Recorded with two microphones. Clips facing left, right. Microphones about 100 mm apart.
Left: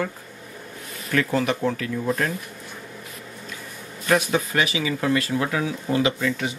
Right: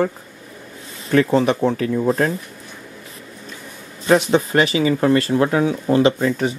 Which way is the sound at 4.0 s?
30° right (ahead or behind).